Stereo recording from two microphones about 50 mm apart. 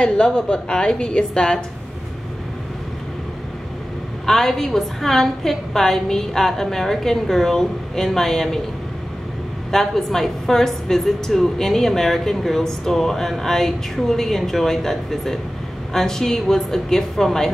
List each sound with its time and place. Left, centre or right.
0.0 s a woman's voice: centre
4.3 s a woman's voice: centre
9.7 s a woman's voice: centre